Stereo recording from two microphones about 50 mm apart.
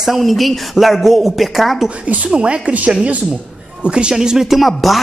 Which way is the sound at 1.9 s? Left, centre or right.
Right.